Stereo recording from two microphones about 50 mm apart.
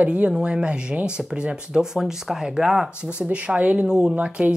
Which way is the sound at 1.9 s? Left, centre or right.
Centre.